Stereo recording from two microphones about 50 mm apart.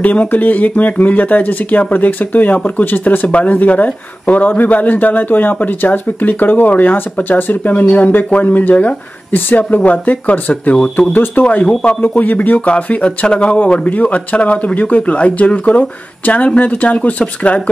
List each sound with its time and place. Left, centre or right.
0.0 s a man's voice: left
13.8 s speech: left